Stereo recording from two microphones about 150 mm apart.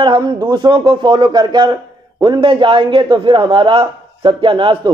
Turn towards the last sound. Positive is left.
turn(degrees=-35)  # may be behind; listen again after turning